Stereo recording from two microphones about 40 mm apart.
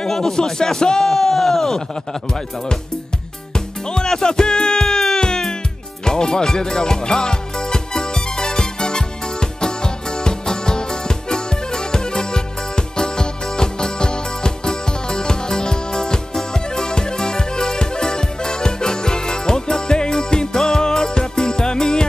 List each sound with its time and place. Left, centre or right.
0.0 s a man's voice: centre
3.5 s music: centre